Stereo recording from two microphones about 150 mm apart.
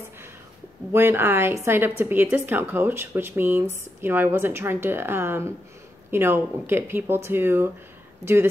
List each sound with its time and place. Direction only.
0.9 s speech: 15° right (ahead or behind)